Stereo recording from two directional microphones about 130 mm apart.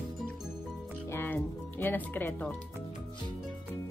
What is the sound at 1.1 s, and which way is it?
Music, 15° left (ahead or behind).